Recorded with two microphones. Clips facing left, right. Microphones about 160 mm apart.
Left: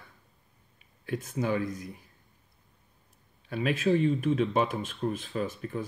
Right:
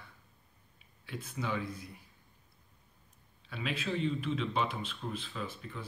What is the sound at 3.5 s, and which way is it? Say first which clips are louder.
Speech: left 10 dB; 50° left (ahead or behind).